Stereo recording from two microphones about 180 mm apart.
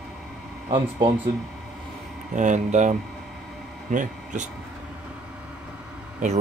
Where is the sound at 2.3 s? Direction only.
45° right (ahead or behind).